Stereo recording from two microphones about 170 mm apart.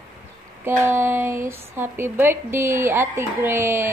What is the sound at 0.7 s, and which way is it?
Speech, 15° right (ahead or behind).